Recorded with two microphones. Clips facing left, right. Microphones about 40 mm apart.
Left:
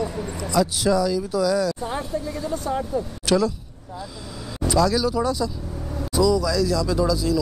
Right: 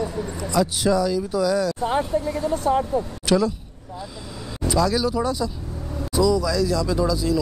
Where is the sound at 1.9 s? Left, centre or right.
Right.